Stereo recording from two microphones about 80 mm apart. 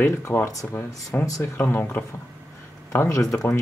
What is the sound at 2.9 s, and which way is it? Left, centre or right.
Speech, left.